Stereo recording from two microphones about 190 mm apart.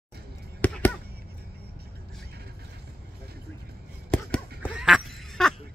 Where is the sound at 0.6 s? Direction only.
10° left (ahead or behind).